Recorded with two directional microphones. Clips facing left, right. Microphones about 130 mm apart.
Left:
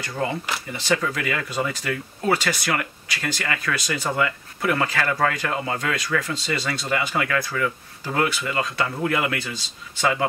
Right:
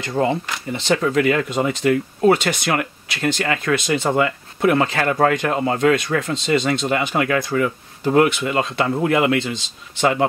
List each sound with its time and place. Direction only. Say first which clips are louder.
0.0 s speech: right 7 dB; 25° right (ahead or behind)